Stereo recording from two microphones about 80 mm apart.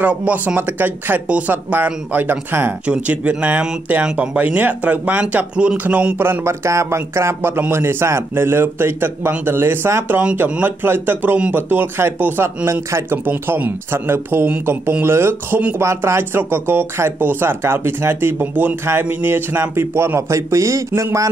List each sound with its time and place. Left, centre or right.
0.0 s speech: centre; by 21.3 s right